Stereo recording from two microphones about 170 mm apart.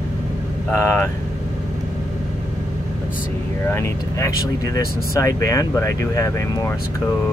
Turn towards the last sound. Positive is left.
turn(degrees=20)  # may be behind; listen again after turning